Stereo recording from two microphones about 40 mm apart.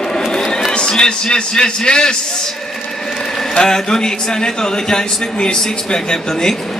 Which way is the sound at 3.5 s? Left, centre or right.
Centre.